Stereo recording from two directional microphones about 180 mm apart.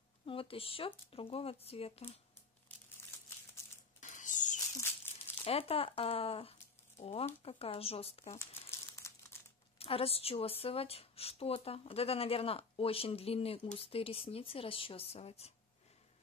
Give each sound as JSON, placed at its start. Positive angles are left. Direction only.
{"t": 0.2, "sound": "a woman's voice", "side_deg": 30}
{"t": 2.7, "sound": "crumpling", "side_deg": 10}
{"t": 4.0, "sound": "a sound", "side_deg": 45}
{"t": 5.4, "sound": "a woman's voice", "side_deg": 30}
{"t": 8.6, "sound": "crumpling", "side_deg": 15}
{"t": 9.8, "sound": "a woman's voice", "side_deg": 30}